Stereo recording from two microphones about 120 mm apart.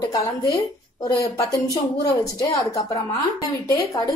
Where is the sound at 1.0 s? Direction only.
30° left (ahead or behind).